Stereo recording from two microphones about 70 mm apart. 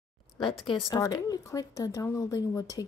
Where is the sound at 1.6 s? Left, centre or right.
Left.